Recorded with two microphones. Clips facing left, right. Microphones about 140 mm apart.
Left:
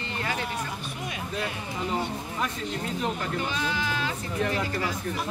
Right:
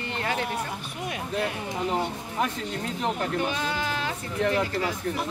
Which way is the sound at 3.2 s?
55° right (ahead or behind).